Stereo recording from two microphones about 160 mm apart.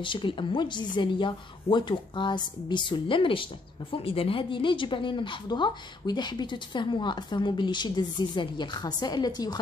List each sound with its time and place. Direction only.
0.0 s speech: 30° left (ahead or behind)